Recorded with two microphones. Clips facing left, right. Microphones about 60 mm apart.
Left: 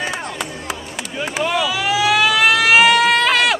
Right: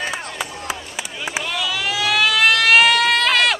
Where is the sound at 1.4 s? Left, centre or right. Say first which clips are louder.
Left 7 dB; centre.